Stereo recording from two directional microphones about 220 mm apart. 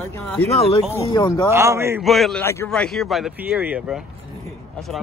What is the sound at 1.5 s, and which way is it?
Speech, 10° right (ahead or behind).